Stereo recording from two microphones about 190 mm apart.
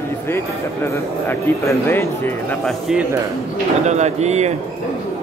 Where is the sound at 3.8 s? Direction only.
35° right (ahead or behind).